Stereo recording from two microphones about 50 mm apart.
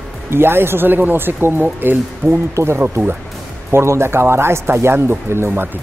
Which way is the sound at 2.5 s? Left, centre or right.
Right.